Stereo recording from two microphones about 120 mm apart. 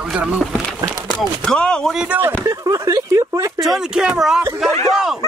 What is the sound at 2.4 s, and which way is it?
Speech, 25° right (ahead or behind).